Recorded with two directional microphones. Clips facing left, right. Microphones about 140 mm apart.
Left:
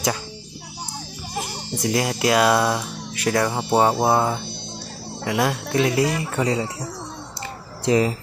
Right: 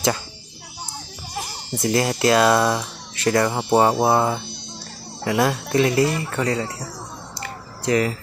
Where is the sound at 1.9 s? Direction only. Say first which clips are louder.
Right 2 dB; 5° left (ahead or behind).